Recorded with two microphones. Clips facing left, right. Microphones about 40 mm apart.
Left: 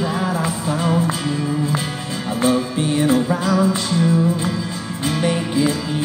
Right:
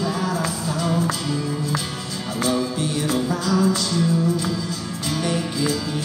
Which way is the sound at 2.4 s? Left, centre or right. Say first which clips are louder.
Left 4 dB; left.